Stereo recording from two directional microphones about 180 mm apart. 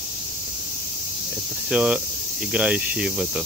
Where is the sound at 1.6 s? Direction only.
5° right (ahead or behind).